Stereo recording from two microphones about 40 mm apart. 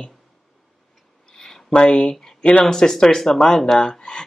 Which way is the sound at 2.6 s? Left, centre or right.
Centre.